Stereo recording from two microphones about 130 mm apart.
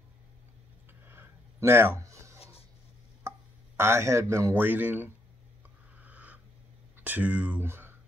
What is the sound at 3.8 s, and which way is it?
Speech, 20° right (ahead or behind).